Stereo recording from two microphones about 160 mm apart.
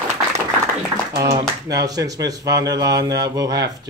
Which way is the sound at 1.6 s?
20° right (ahead or behind).